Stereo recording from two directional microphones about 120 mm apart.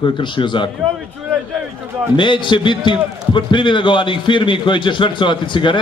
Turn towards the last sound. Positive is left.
turn(degrees=40)  # may be behind; listen again after turning